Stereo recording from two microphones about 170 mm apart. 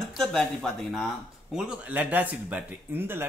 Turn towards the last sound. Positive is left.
turn(degrees=-10)  # may be behind; listen again after turning